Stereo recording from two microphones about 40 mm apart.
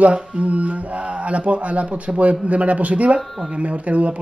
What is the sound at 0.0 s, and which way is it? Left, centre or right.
A man's voice, right.